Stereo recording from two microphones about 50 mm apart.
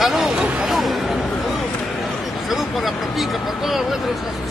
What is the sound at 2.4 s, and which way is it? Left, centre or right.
Speech, centre.